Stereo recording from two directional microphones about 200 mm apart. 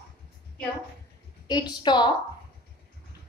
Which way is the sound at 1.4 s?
20° left (ahead or behind).